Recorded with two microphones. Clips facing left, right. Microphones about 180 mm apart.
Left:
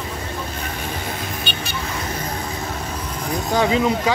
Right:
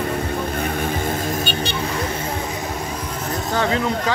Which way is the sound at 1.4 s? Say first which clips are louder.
Right 5 dB; 35° right (ahead or behind).